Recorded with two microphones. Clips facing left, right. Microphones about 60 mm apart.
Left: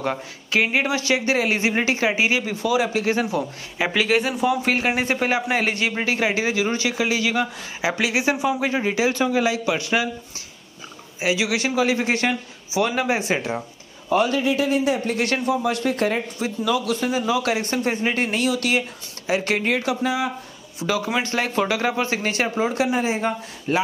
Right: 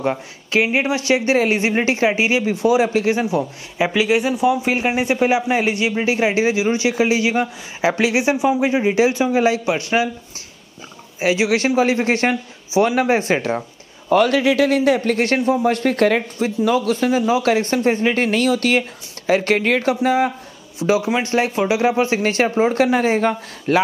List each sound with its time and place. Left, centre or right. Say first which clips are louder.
0.7 s a man's voice: right 3 dB; right
3.7 s speech: right 3 dB; centre
6.0 s a man's voice: right 6 dB; right
9.3 s speech: right 4 dB; right
11.1 s speech: right 5 dB; right
14.0 s a man's voice: right 5 dB; right
14.3 s speech: right 5 dB; right
15.1 s a man's voice: right 4 dB; right
16.3 s speech: right 5 dB; right
20.8 s a man's voice: right 5 dB; right
22.7 s a man's voice: right 6 dB; right